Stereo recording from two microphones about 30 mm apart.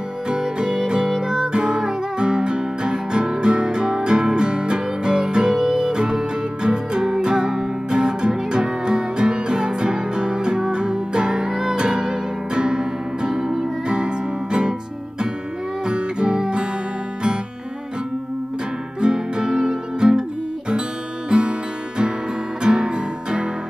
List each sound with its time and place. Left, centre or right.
0.3 s music: right
13.8 s music: right
18.9 s music: right
21.3 s music: right